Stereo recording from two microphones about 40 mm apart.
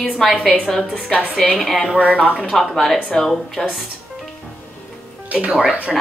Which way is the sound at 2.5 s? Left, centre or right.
Centre.